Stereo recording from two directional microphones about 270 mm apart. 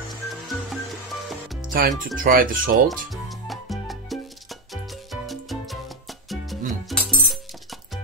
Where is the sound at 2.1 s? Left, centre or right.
Right.